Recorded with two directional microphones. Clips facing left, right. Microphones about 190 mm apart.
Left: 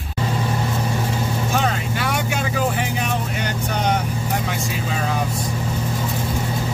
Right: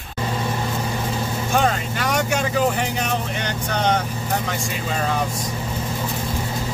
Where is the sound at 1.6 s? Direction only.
5° left (ahead or behind).